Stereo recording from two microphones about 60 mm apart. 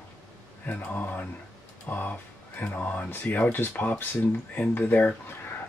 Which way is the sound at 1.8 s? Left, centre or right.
Left.